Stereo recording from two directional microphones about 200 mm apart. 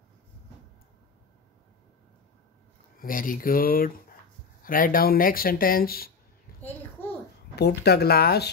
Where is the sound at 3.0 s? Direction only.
45° left (ahead or behind).